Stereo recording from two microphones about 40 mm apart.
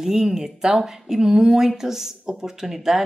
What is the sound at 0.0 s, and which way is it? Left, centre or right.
Speech, centre.